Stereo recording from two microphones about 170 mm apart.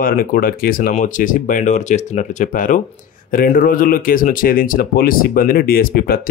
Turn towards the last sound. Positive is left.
turn(degrees=60)  # may be behind; listen again after turning